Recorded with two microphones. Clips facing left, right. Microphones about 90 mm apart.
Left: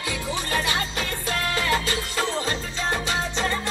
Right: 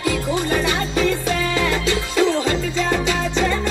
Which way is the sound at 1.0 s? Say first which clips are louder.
Right 8 dB; 80° right.